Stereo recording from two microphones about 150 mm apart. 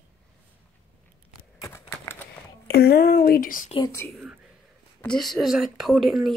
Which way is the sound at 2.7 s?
90° left.